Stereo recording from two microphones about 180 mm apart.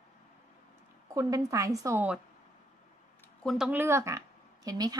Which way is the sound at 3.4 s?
5° right (ahead or behind).